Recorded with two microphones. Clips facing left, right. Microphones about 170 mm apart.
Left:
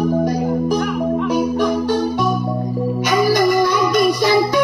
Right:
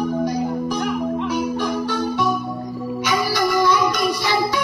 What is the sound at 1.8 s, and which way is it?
Music, 45° left (ahead or behind).